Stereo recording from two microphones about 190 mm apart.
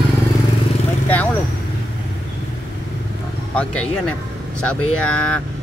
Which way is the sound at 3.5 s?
5° left (ahead or behind).